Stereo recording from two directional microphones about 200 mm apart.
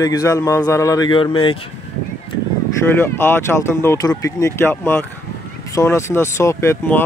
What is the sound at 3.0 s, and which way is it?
Speech, 10° left (ahead or behind).